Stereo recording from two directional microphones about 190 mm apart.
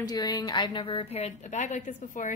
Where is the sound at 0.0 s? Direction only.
20° left (ahead or behind).